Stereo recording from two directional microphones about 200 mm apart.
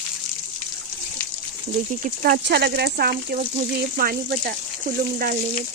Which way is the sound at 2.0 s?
45° right (ahead or behind).